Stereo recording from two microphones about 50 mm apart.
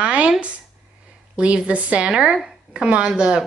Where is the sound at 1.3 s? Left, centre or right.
Right.